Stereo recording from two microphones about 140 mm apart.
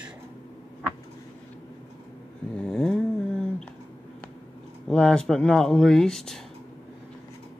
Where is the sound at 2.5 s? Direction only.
5° left (ahead or behind).